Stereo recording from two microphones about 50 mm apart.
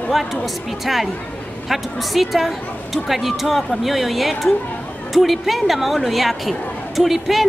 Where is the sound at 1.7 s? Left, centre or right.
Centre.